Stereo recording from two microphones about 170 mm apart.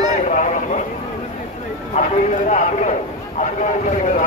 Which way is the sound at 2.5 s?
45° left (ahead or behind).